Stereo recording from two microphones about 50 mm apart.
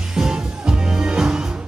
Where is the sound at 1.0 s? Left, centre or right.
Centre.